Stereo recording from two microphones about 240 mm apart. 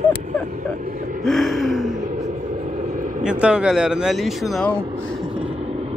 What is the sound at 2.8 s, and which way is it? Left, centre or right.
Vehicle, right.